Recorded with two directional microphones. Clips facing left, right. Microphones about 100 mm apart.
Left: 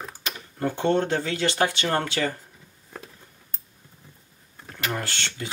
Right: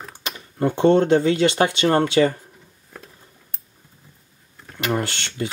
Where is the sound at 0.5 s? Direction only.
20° right (ahead or behind).